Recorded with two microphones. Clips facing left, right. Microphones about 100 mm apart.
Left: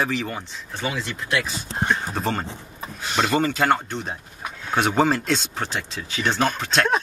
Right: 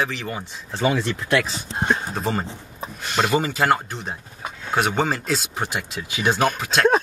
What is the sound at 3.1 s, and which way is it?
Speech, 15° right (ahead or behind).